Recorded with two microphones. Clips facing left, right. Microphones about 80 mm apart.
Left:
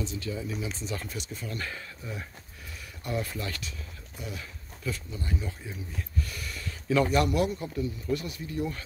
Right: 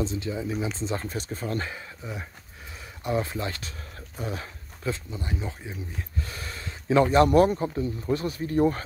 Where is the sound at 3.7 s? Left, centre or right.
Right.